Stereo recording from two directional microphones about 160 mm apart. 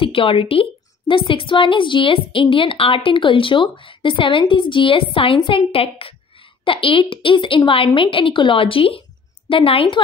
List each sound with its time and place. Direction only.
0.0 s a woman's voice: 35° left (ahead or behind)